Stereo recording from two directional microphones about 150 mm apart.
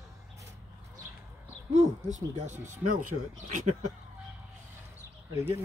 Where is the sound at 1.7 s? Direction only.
50° right (ahead or behind).